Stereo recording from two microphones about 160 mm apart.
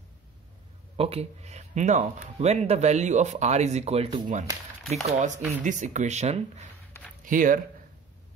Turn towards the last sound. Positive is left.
turn(degrees=-55)  # may be behind; listen again after turning